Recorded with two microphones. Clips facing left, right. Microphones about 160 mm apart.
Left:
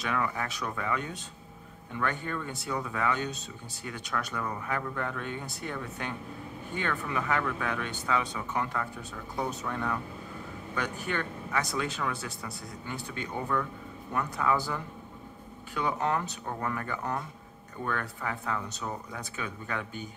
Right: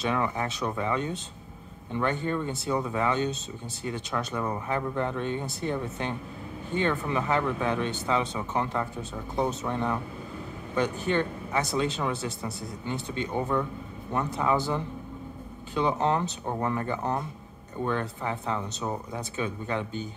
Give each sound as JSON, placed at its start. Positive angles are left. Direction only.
{"t": 0.0, "sound": "speech", "side_deg": -25}